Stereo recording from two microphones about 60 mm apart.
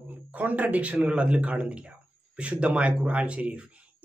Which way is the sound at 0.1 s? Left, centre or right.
Right.